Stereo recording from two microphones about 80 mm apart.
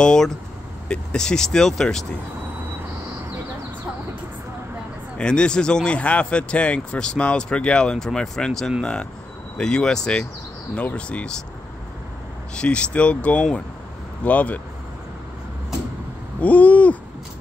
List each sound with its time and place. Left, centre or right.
0.0 s speech: centre
5.1 s speech: centre
12.5 s speech: centre
16.3 s owl: centre